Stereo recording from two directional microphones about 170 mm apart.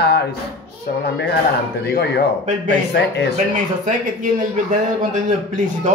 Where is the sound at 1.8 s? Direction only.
70° left (ahead or behind).